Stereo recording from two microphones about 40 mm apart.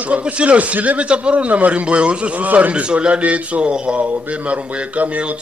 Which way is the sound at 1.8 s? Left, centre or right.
Right.